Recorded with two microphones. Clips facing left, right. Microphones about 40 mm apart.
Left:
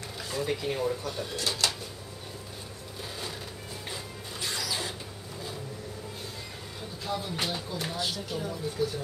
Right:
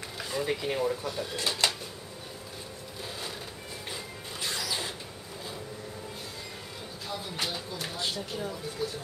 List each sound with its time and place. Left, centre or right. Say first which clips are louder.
0.2 s speech: even; centre
1.6 s a sound: right 2 dB; centre
3.9 s music: even; centre
7.1 s speech: left 3 dB; centre